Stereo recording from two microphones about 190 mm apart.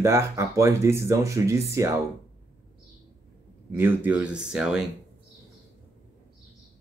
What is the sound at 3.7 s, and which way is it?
Speech, 10° right (ahead or behind).